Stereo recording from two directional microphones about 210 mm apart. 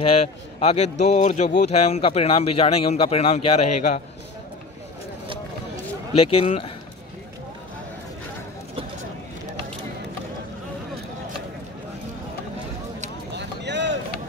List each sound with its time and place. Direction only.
0.0 s a man's voice: 30° left (ahead or behind)
6.1 s speech: 25° left (ahead or behind)
13.4 s a sound: 55° right (ahead or behind)